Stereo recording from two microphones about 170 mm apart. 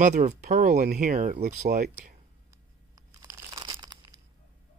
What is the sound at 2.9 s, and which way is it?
Crunch, 20° right (ahead or behind).